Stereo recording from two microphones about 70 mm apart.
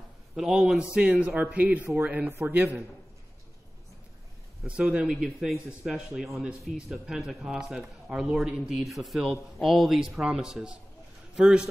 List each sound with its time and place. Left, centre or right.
0.4 s a man's voice: centre
4.6 s a man's voice: centre